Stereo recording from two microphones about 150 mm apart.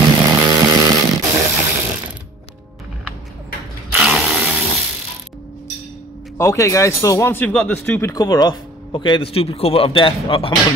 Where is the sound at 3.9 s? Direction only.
5° right (ahead or behind).